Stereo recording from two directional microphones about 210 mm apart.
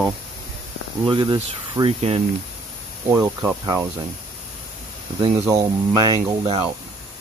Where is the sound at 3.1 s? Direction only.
10° right (ahead or behind).